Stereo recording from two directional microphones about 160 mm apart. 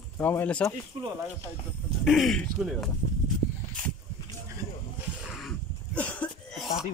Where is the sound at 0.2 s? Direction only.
10° left (ahead or behind).